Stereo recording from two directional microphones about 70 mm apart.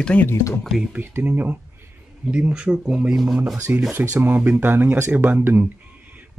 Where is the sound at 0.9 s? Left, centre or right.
Right.